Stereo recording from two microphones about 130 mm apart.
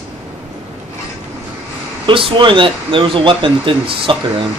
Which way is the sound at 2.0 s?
40° right (ahead or behind).